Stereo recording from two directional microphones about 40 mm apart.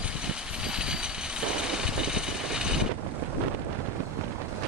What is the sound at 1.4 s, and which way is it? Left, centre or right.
Mechanisms, centre.